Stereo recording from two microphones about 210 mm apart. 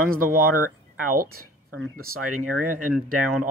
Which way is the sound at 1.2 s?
90° right.